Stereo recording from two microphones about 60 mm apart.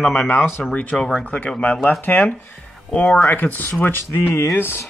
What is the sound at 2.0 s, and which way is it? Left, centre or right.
Speech, left.